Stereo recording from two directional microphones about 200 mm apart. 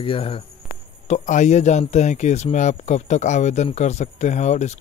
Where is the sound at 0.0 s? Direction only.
25° left (ahead or behind).